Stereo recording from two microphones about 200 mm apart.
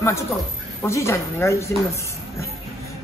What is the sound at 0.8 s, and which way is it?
Speech, 15° left (ahead or behind).